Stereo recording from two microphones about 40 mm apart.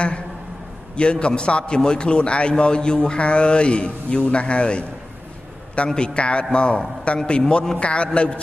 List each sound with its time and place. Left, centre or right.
0.9 s a man's voice: left
5.9 s a man's voice: left